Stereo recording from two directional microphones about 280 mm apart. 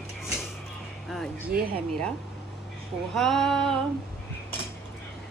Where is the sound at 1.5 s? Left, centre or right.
Right.